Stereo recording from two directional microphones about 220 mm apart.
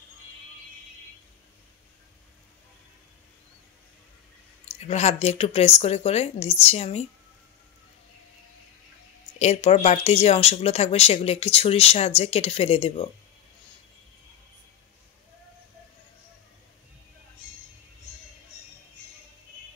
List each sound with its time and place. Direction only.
4.7 s speech: 30° left (ahead or behind)
9.4 s speech: 30° left (ahead or behind)